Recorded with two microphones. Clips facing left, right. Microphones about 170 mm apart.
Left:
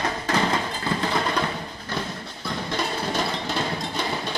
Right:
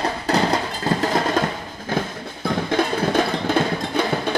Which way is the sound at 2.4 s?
55° right (ahead or behind).